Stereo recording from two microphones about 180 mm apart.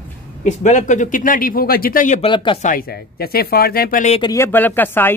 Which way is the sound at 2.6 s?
50° left (ahead or behind).